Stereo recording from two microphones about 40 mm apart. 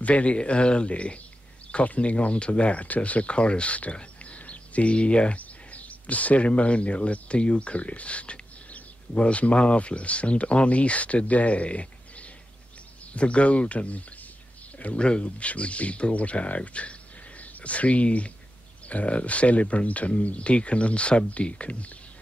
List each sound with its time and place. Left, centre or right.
0.0 s speech: left